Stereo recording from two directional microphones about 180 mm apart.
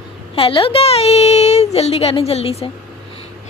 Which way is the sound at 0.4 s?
30° left (ahead or behind).